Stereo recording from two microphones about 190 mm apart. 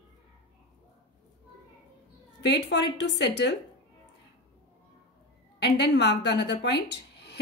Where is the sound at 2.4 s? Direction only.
65° left (ahead or behind).